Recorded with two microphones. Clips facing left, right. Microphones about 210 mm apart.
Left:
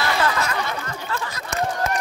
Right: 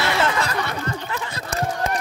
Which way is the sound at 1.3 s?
35° right (ahead or behind).